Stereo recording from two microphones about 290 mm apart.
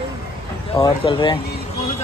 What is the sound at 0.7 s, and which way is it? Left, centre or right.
Speech, centre.